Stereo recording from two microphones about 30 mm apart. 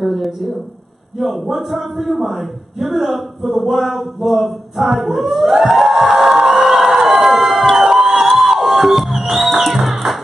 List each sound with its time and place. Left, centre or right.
0.0 s speech: centre
4.8 s music: centre
6.6 s a sound: centre
8.5 s music: centre